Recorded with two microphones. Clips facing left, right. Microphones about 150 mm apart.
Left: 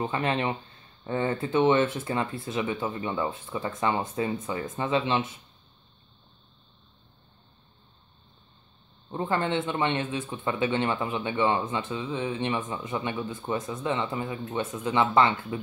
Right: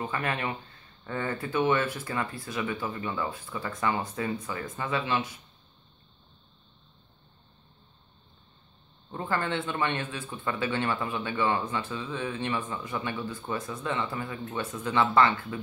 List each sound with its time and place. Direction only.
0.0 s speech: 25° left (ahead or behind)
9.1 s speech: 20° left (ahead or behind)